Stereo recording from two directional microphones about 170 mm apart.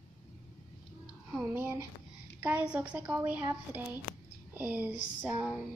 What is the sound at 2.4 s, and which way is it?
A woman's voice, 10° right (ahead or behind).